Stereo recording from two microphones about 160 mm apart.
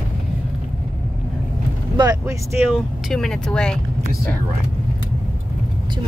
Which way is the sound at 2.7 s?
5° left (ahead or behind).